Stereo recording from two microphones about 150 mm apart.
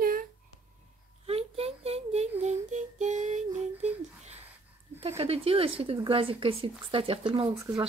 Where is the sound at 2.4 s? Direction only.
50° right (ahead or behind).